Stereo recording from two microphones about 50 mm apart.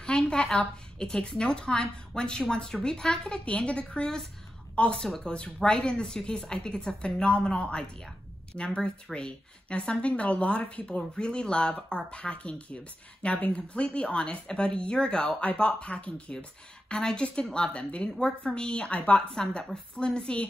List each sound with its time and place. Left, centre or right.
0.0 s a sound: centre
0.6 s a woman's voice: centre
3.4 s speech: left
5.0 s a woman's voice: centre; by 19.2 s left
19.3 s a woman's voice: centre